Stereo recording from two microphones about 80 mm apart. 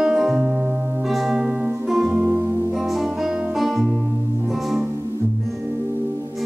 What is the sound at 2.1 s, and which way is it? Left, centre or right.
Music, right.